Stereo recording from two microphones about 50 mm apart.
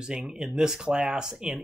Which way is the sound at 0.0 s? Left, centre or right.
Centre.